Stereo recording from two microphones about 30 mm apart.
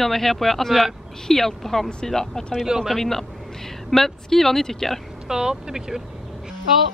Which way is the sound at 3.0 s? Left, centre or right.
Centre.